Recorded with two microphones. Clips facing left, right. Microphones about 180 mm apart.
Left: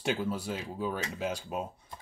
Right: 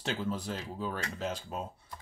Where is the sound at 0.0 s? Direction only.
10° left (ahead or behind).